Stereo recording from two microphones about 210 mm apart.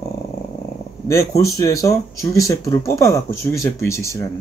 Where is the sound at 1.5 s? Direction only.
15° left (ahead or behind).